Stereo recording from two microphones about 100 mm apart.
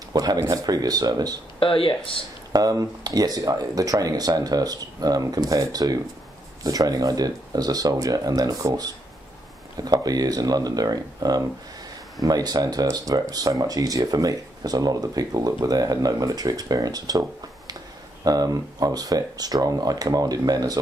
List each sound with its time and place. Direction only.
0.1 s speech: 40° right (ahead or behind)
1.6 s speech: 60° left (ahead or behind)
2.5 s speech: 35° right (ahead or behind)